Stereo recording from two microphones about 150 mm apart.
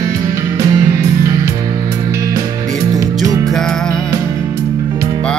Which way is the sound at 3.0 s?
25° right (ahead or behind).